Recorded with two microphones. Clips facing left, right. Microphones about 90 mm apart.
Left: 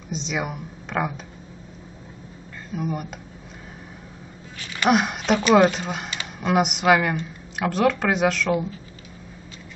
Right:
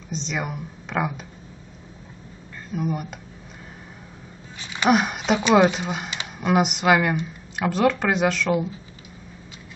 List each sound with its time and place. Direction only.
0.1 s speech: 5° left (ahead or behind)
2.7 s speech: centre (ahead or behind)
4.6 s a sound: 20° right (ahead or behind)
4.8 s speech: centre (ahead or behind)